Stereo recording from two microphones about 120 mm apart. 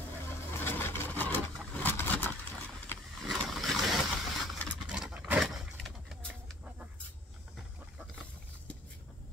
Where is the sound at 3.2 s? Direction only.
Centre (ahead or behind).